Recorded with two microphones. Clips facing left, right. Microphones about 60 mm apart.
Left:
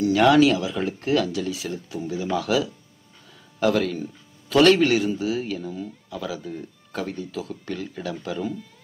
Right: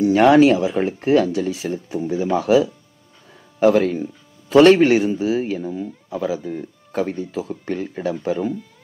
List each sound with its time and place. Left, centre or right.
0.0 s speech: right